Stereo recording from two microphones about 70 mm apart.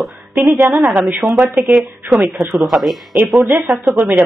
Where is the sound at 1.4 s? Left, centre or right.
Right.